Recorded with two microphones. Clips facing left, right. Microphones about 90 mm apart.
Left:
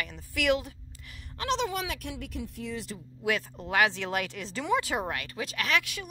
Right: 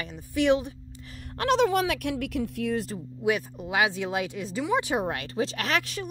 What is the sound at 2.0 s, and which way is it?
Speech, 70° right (ahead or behind).